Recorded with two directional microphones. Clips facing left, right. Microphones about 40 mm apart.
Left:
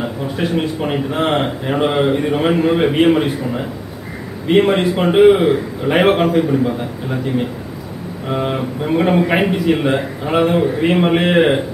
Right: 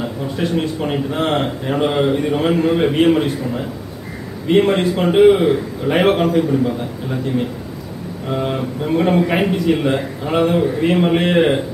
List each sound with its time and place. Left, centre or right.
0.0 s speech: centre
8.3 s speech: left